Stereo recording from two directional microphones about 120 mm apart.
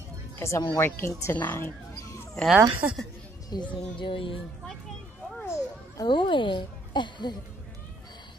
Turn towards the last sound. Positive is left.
turn(degrees=40)  # may be behind; listen again after turning